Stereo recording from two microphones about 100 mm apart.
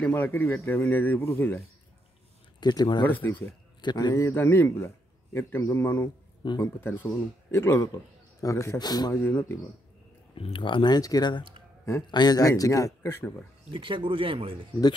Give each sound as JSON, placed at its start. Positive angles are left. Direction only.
{"t": 0.0, "sound": "a man's voice", "side_deg": 20}
{"t": 2.6, "sound": "speech", "side_deg": 45}
{"t": 3.0, "sound": "a man's voice", "side_deg": 20}
{"t": 3.8, "sound": "speech", "side_deg": 50}
{"t": 4.1, "sound": "a man's voice", "side_deg": 25}
{"t": 6.4, "sound": "speech", "side_deg": 60}
{"t": 6.8, "sound": "a man's voice", "side_deg": 20}
{"t": 8.7, "sound": "speech", "side_deg": 45}
{"t": 10.3, "sound": "speech", "side_deg": 65}
{"t": 13.0, "sound": "a man's voice", "side_deg": 20}
{"t": 13.7, "sound": "speech", "side_deg": -60}